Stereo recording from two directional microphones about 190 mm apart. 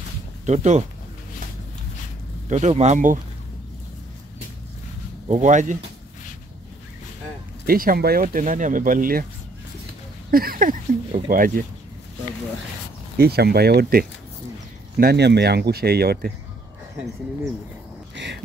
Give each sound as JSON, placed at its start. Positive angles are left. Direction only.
{"t": 0.5, "sound": "speech", "side_deg": -35}
{"t": 2.5, "sound": "speech", "side_deg": -35}
{"t": 5.3, "sound": "speech", "side_deg": -40}
{"t": 7.6, "sound": "speech", "side_deg": -50}
{"t": 10.3, "sound": "speech", "side_deg": -50}
{"t": 13.2, "sound": "speech", "side_deg": -55}
{"t": 18.1, "sound": "duck", "side_deg": -70}